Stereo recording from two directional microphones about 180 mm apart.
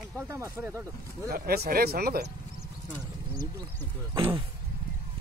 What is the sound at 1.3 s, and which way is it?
Speech, 60° right (ahead or behind).